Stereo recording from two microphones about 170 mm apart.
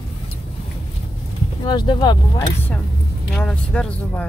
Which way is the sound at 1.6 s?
25° left (ahead or behind).